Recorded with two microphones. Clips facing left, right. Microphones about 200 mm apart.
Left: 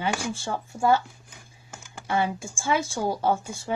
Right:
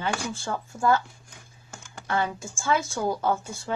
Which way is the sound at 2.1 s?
15° left (ahead or behind).